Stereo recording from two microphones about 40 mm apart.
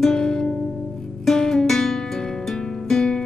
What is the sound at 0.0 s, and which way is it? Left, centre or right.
Music, centre.